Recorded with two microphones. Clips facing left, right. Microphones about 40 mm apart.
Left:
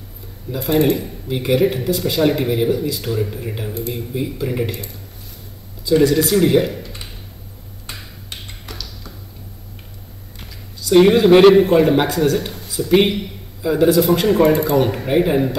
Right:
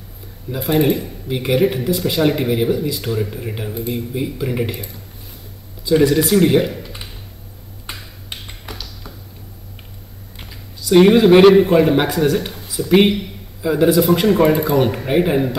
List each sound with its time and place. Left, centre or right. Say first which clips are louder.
0.5 s speech: even; centre
8.3 s a sound: right 2 dB; centre
10.4 s speech: even; centre